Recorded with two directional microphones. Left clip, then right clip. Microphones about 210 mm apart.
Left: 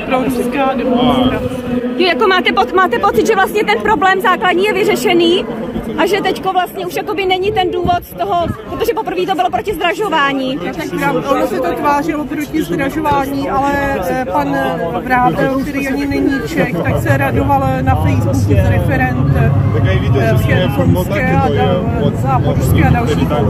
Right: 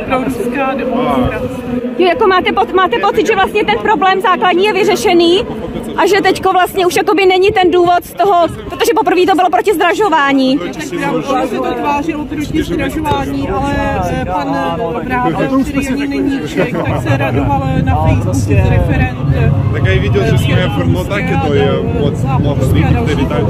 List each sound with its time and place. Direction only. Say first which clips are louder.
0.1 s a woman's voice: left 1 dB; 10° left (ahead or behind)
2.2 s speech: right 1 dB; 20° right (ahead or behind)
5.9 s speech: right 4 dB; 35° right (ahead or behind)
15.1 s a woman's voice: left 3 dB; 10° left (ahead or behind)
17.1 s a woman's voice: left 2 dB; 15° left (ahead or behind)
21.4 s a woman's voice: right 3 dB; 10° left (ahead or behind)